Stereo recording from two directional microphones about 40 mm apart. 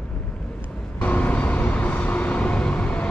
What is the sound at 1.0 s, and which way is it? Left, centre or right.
Vehicle, left.